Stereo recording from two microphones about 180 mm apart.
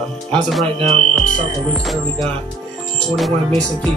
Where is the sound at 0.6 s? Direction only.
30° right (ahead or behind).